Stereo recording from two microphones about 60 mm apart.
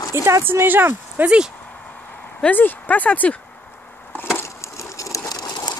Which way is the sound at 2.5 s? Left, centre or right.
Left.